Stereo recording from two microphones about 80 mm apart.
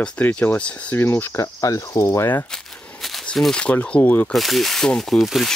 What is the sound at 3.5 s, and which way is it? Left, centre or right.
Speech, centre.